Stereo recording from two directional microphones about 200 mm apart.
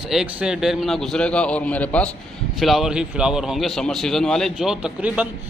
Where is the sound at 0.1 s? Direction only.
5° right (ahead or behind).